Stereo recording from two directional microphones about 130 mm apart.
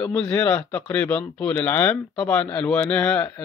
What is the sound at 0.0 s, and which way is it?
Speech, 10° left (ahead or behind).